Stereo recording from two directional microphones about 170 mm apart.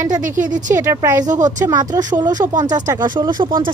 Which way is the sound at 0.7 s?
15° right (ahead or behind).